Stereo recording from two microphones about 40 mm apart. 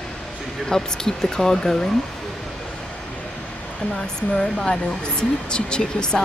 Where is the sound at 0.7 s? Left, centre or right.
Centre.